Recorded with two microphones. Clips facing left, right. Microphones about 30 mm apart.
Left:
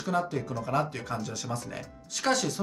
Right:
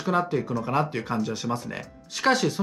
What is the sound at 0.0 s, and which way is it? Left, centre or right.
Speech, right.